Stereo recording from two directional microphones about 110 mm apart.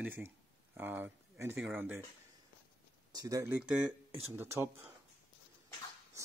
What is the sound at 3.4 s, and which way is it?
Speech, 10° right (ahead or behind).